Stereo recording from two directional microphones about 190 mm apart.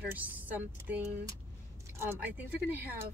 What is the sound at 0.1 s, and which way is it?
Speech, 10° right (ahead or behind).